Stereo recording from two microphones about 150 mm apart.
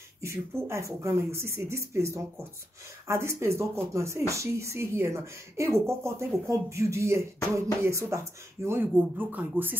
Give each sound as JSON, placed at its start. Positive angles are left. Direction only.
{"t": 0.2, "sound": "a woman's voice", "side_deg": -20}